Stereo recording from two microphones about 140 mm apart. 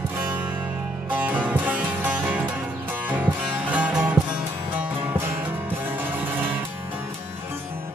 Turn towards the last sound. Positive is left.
turn(degrees=-15)  # may be behind; listen again after turning